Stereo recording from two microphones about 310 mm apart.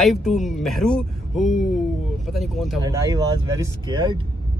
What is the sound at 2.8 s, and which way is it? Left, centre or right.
Speech, centre.